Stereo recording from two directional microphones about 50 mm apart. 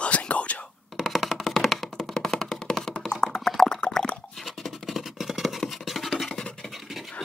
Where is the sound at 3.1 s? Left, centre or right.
Centre.